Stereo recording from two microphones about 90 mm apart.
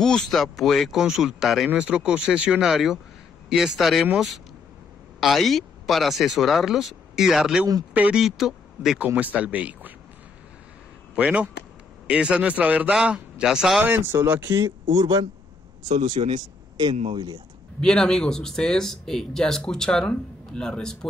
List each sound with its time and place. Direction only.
0.0 s speech: 5° left (ahead or behind)
1.7 s speech: 15° right (ahead or behind)
7.9 s speech: 15° right (ahead or behind)
8.2 s speech: 5° right (ahead or behind)
11.1 s speech: 15° right (ahead or behind)
13.8 s speech: 25° right (ahead or behind)
15.0 s speech: 45° right (ahead or behind)
15.9 s speech: 80° right
17.7 s speech: 5° left (ahead or behind)